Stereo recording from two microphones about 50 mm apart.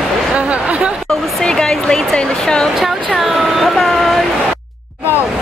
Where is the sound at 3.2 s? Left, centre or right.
Centre.